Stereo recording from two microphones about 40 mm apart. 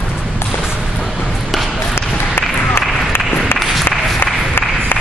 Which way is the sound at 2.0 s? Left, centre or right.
Left.